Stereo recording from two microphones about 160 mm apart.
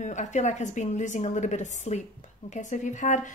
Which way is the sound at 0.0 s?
50° left (ahead or behind).